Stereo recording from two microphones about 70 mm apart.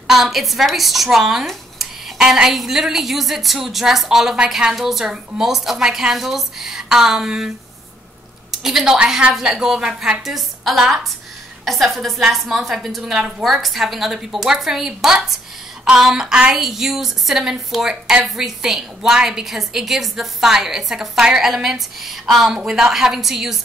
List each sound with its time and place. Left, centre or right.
0.1 s a woman's voice: centre